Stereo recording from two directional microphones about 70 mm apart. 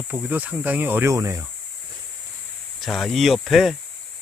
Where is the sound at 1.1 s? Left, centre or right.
Right.